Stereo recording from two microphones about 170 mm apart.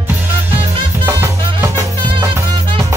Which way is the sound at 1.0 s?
15° right (ahead or behind).